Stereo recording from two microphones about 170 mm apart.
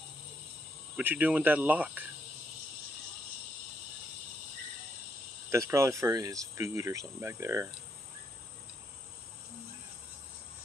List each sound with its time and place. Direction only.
0.9 s speech: 10° right (ahead or behind)
5.5 s speech: 15° right (ahead or behind)